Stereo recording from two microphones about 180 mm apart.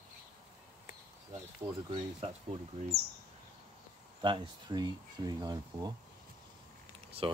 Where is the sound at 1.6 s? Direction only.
15° right (ahead or behind).